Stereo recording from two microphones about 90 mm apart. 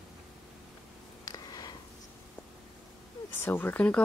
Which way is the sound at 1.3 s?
45° left (ahead or behind).